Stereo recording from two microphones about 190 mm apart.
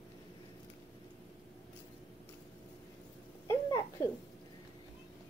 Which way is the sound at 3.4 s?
15° left (ahead or behind).